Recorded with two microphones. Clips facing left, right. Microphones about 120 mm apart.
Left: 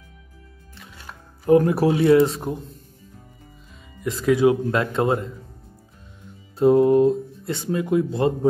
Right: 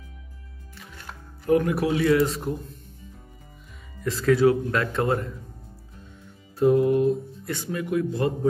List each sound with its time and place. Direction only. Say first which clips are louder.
1.5 s speech: left 5 dB; 30° left (ahead or behind)
4.0 s speech: left 1 dB; 15° left (ahead or behind)
6.5 s speech: left 4 dB; 25° left (ahead or behind)